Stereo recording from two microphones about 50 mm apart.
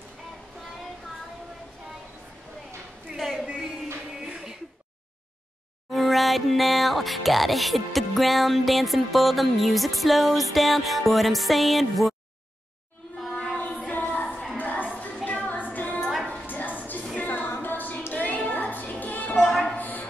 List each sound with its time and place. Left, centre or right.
3.2 s a sound: centre
5.9 s speech: centre
13.2 s child singing: centre
14.1 s music: left
17.5 s a sound: left
18.1 s music: left